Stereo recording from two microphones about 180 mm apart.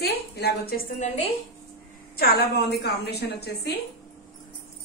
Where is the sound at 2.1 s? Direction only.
60° left (ahead or behind).